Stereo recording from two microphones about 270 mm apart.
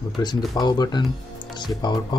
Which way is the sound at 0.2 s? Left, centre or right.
Centre.